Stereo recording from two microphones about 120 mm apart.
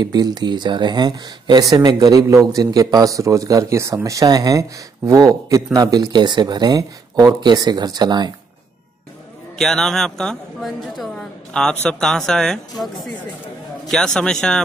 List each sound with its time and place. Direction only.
0.0 s speech: 35° right (ahead or behind)
9.6 s a man's voice: 5° left (ahead or behind)